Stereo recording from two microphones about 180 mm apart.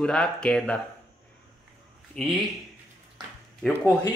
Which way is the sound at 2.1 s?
Centre (ahead or behind).